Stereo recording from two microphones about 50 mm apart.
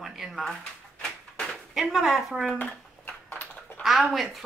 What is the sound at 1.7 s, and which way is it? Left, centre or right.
Speech, centre.